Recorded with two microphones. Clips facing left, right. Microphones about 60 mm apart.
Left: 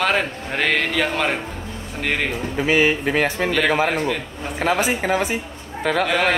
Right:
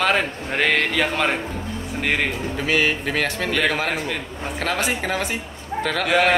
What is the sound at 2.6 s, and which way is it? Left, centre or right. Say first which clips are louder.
Speech: left 4 dB; centre.